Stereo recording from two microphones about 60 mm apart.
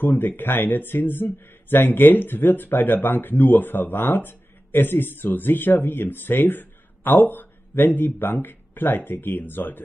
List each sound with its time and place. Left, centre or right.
0.0 s speech: left